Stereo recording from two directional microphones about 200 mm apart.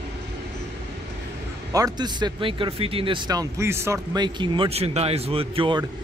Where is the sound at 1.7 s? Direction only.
20° right (ahead or behind).